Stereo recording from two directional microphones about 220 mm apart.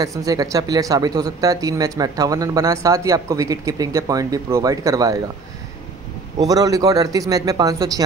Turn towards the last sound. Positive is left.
turn(degrees=-15)  # may be behind; listen again after turning